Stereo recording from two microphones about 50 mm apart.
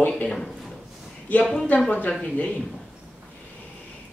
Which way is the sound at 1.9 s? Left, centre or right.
Left.